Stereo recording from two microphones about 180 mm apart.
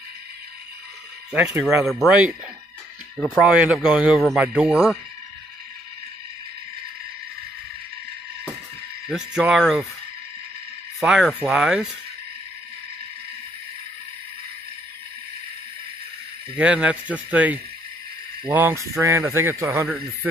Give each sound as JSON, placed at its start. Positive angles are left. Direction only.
{"t": 1.3, "sound": "speech", "side_deg": -5}
{"t": 3.3, "sound": "speech", "side_deg": -5}
{"t": 9.3, "sound": "speech", "side_deg": -5}
{"t": 11.0, "sound": "speech", "side_deg": 0}
{"t": 16.5, "sound": "speech", "side_deg": -5}